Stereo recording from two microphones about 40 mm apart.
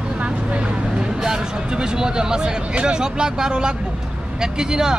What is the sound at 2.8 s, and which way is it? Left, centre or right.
Speech, right.